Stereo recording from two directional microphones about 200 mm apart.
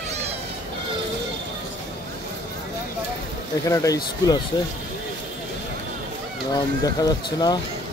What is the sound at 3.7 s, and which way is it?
Speech, 15° left (ahead or behind).